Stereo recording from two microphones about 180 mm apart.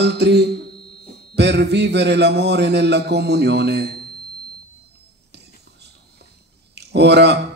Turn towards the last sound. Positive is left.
turn(degrees=-70)  # may be behind; listen again after turning